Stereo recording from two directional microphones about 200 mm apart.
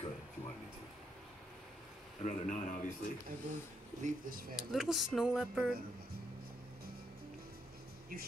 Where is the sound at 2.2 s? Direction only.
40° left (ahead or behind).